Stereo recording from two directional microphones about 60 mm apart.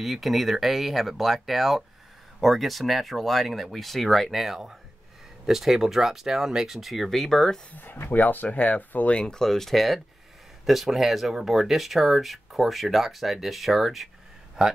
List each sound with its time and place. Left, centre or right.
0.0 s speech: centre
7.7 s speech: left
9.2 s speech: centre